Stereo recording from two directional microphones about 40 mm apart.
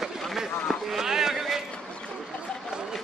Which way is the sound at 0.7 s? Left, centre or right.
Centre.